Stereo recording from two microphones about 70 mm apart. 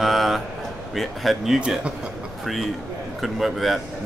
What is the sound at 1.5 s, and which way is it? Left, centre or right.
Speech, centre.